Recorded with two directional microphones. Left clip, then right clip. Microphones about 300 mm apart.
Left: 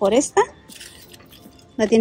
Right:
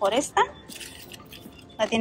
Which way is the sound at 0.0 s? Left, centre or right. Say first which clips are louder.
Left 5 dB; centre.